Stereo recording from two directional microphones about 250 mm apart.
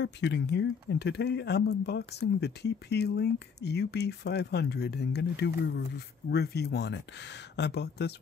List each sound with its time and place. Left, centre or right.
0.0 s speech: left